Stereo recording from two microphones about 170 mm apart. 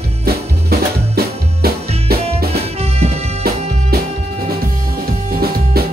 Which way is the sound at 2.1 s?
65° right (ahead or behind).